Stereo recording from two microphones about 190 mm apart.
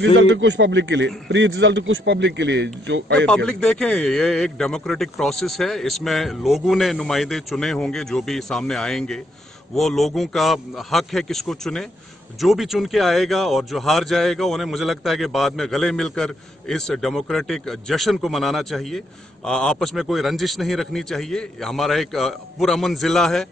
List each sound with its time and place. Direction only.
0.0 s a man's voice: 75° right (ahead or behind)
3.3 s speech: 5° left (ahead or behind)